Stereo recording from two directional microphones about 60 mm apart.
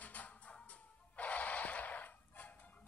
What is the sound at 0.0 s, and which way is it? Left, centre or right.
Music, left.